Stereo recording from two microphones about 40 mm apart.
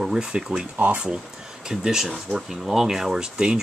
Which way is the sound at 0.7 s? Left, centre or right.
Right.